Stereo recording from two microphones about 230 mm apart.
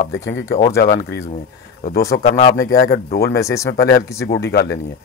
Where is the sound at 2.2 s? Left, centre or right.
Left.